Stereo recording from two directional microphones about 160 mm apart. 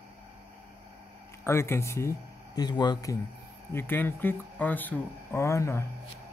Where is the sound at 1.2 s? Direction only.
15° left (ahead or behind).